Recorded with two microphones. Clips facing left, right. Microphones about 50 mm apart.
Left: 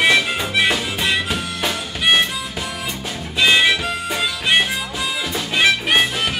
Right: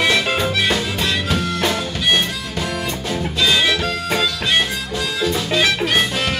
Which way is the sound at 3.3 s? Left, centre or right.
Left.